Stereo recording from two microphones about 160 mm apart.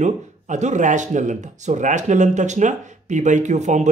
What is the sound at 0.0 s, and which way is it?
Speech, 45° right (ahead or behind).